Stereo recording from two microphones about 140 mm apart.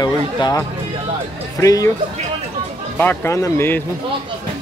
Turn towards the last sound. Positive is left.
turn(degrees=15)  # may be behind; listen again after turning